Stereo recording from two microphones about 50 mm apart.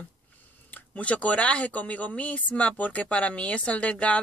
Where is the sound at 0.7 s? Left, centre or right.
Left.